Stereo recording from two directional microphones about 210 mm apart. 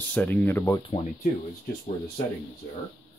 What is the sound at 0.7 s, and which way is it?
Speech, 30° left (ahead or behind).